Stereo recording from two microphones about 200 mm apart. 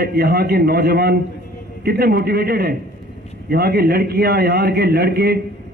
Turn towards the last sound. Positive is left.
turn(degrees=-50)  # may be behind; listen again after turning